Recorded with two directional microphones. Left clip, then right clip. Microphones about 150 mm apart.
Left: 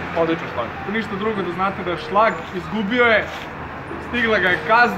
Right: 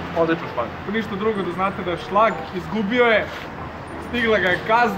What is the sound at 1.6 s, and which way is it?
A man's voice, 25° right (ahead or behind).